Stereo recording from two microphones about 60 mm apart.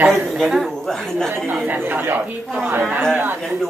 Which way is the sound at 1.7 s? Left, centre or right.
Right.